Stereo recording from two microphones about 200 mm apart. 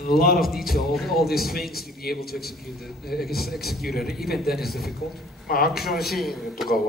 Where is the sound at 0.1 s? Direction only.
50° left (ahead or behind).